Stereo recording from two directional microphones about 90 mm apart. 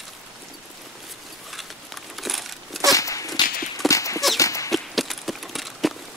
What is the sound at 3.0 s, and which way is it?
Walk, 40° left (ahead or behind).